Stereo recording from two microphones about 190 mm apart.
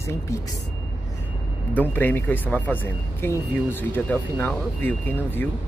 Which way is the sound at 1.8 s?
10° left (ahead or behind).